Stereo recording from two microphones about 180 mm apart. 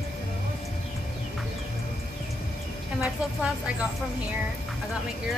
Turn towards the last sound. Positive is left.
turn(degrees=-5)  # may be behind; listen again after turning